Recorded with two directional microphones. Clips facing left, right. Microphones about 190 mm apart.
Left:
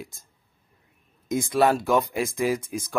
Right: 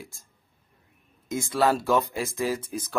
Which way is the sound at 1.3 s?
15° left (ahead or behind).